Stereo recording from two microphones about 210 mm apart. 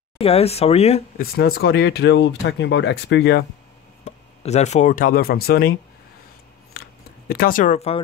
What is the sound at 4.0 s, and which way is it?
Speech, 30° left (ahead or behind).